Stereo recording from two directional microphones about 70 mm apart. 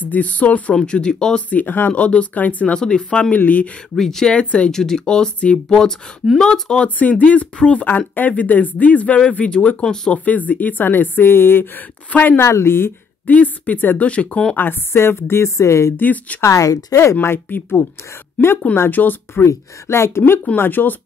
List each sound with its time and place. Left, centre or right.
0.0 s speech: left
3.9 s speech: centre; by 12.4 s left
12.4 s speech: left
13.3 s speech: left
14.6 s speech: left
16.0 s speech: left
16.4 s speech: left
18.8 s speech: left
19.4 s speech: left